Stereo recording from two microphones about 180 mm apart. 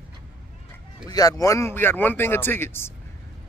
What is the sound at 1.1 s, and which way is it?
Speech, 20° left (ahead or behind).